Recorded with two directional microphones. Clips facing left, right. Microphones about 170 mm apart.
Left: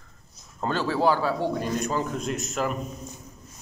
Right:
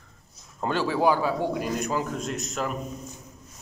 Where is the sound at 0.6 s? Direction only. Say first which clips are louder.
Even; 15° right (ahead or behind); by 2.8 s centre (ahead or behind).